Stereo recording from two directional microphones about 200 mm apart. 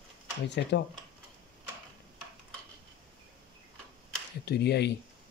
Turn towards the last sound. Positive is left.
turn(degrees=55)  # may be behind; listen again after turning